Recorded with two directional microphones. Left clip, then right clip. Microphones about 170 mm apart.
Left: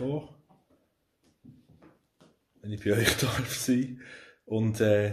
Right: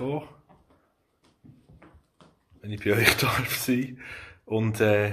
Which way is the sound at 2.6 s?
15° left (ahead or behind).